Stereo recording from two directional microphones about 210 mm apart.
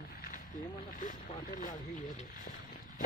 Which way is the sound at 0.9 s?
40° left (ahead or behind).